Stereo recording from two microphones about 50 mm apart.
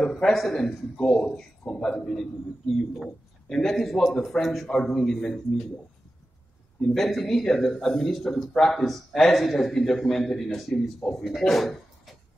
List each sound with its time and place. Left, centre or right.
0.0 s a man's voice: centre
2.7 s a man's voice: centre
6.9 s a man's voice: centre